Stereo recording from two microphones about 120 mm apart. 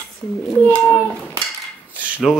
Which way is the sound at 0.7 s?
15° left (ahead or behind).